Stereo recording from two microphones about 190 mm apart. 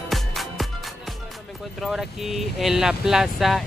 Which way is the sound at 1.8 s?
Centre (ahead or behind).